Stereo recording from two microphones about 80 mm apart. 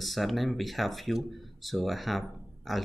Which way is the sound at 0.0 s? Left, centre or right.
Centre.